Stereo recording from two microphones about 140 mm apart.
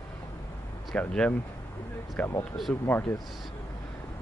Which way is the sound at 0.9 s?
5° left (ahead or behind).